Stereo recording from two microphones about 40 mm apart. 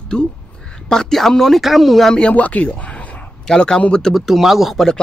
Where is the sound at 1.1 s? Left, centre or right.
Centre.